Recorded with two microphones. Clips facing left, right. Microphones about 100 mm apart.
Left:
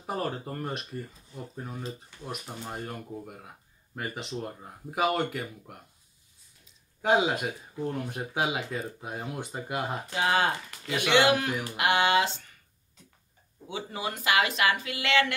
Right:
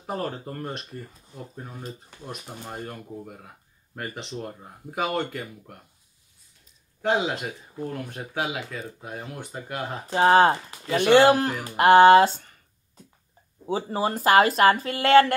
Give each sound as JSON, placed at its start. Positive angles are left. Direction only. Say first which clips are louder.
{"t": 0.0, "sound": "speech", "louder": "right 1 dB", "side_deg": 5}
{"t": 2.2, "sound": "speech", "louder": "even", "side_deg": -5}
{"t": 7.0, "sound": "speech", "louder": "even", "side_deg": 10}
{"t": 8.4, "sound": "speech", "louder": "even", "side_deg": 20}
{"t": 10.0, "sound": "speech", "louder": "right 10 dB", "side_deg": -40}
{"t": 11.7, "sound": "a sound", "louder": "right 11 dB", "side_deg": -45}
{"t": 13.7, "sound": "speech", "louder": "right 8 dB", "side_deg": -35}